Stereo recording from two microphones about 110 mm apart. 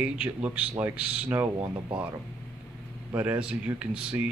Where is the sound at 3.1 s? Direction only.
10° right (ahead or behind).